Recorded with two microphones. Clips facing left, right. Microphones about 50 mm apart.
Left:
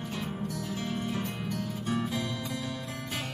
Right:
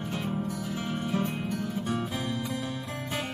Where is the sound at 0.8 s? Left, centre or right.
Right.